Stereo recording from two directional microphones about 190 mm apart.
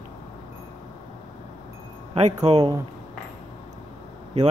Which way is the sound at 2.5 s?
30° right (ahead or behind).